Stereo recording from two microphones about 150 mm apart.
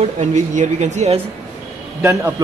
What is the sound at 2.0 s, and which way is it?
Speech, 20° right (ahead or behind).